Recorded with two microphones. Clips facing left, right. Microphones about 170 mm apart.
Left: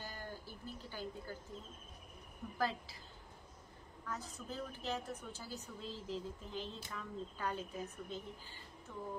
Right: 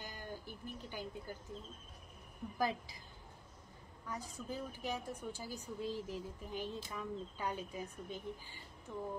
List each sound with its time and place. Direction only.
0.0 s a sound: 15° right (ahead or behind)
2.5 s speech: 15° right (ahead or behind)
4.1 s speech: 10° right (ahead or behind)